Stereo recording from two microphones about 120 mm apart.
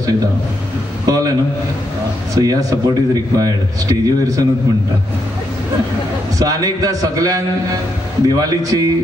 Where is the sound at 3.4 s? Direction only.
30° right (ahead or behind).